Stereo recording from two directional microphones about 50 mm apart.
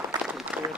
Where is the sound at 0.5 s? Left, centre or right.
Right.